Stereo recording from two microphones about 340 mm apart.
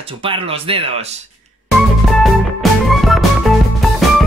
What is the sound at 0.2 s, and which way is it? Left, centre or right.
Speech, centre.